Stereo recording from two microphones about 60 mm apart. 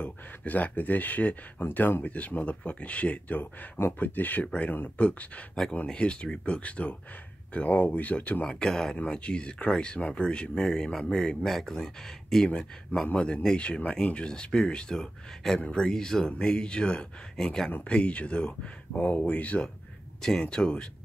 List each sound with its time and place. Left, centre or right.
0.0 s speech: left
2.0 s speech: left
20.2 s speech: centre